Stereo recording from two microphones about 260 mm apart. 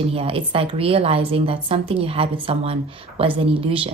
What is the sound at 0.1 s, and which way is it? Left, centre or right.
A woman's voice, right.